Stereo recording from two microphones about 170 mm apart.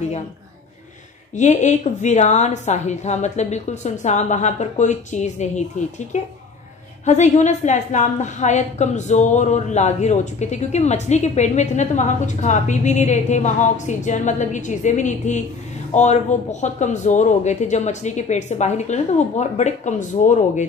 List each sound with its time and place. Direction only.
1.3 s a woman's voice: 45° left (ahead or behind)